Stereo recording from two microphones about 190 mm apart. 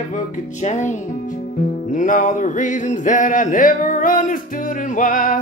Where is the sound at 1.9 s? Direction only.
45° left (ahead or behind).